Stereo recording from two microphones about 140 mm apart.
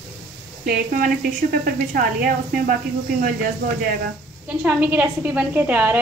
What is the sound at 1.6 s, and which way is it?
Speech, 90° right.